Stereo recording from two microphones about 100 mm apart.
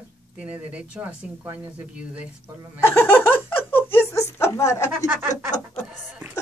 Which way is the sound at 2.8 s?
25° left (ahead or behind).